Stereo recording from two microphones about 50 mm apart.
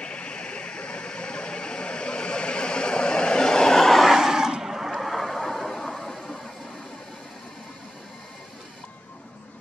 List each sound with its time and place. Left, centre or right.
0.0 s vehicle: left